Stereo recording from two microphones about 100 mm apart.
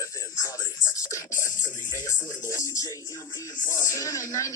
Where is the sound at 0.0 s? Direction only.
35° left (ahead or behind).